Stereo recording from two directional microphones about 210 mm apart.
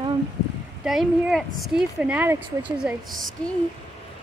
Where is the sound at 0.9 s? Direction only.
Centre (ahead or behind).